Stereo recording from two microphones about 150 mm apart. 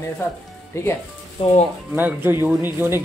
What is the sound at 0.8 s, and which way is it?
Speech, 15° left (ahead or behind).